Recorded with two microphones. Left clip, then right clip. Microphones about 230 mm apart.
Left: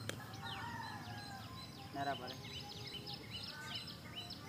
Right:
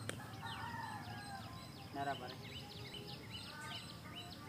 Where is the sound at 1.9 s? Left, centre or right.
Left.